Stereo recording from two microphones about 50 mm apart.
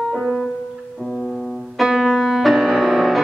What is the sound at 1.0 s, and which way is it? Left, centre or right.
Music, centre.